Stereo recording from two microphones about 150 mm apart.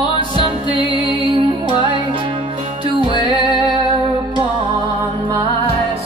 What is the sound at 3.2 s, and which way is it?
Music, 30° left (ahead or behind).